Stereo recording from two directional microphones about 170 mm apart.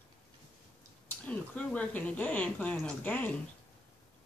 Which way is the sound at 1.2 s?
5° left (ahead or behind).